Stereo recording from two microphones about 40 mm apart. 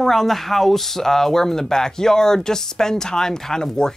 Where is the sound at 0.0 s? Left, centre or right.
Centre.